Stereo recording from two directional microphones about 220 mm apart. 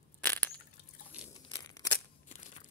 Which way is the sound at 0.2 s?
5° left (ahead or behind).